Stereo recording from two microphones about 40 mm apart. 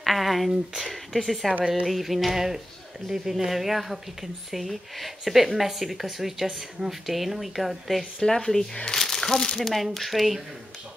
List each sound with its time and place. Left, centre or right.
0.0 s speech: centre
8.2 s speech: centre
8.8 s crumpling: centre
9.6 s speech: centre